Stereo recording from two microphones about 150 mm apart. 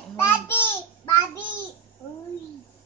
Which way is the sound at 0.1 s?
15° left (ahead or behind).